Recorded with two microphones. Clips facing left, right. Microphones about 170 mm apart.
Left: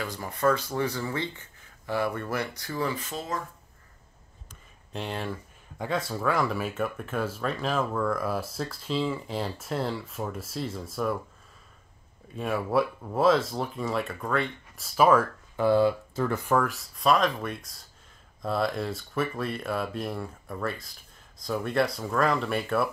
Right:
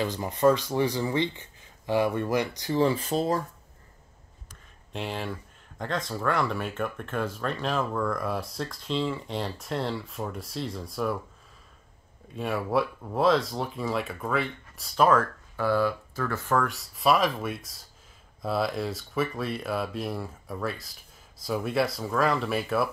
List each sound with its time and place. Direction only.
0.0 s speech: 20° right (ahead or behind)
4.9 s speech: centre (ahead or behind)
12.3 s speech: centre (ahead or behind)
15.6 s speech: 20° left (ahead or behind)
16.6 s speech: centre (ahead or behind)